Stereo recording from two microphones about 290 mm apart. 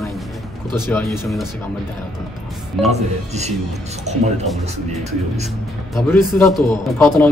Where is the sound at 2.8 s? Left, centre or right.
Centre.